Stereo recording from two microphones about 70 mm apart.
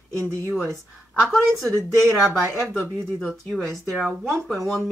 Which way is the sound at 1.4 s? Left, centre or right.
Centre.